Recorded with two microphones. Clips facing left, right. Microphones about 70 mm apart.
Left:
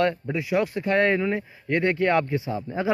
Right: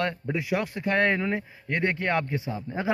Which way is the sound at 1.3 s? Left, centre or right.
Right.